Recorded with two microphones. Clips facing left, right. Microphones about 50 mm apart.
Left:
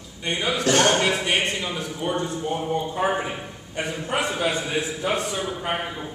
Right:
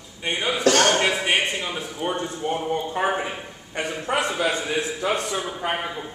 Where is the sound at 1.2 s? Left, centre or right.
Centre.